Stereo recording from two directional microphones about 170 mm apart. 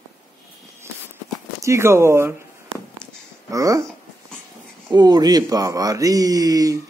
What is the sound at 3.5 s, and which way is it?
Speech, 20° right (ahead or behind).